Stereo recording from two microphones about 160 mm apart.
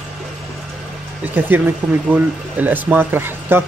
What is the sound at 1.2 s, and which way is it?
Speech, 10° right (ahead or behind).